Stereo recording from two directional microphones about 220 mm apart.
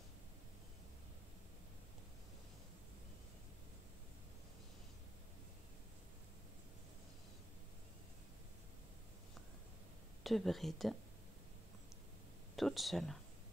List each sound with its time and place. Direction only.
10.2 s speech: centre (ahead or behind)
12.5 s speech: centre (ahead or behind)